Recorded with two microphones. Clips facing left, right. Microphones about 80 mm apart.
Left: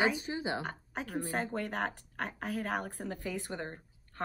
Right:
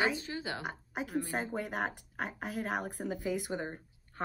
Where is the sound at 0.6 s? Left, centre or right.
Centre.